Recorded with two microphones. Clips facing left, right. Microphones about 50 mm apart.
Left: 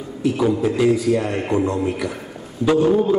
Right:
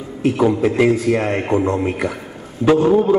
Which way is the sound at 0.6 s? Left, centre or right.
Right.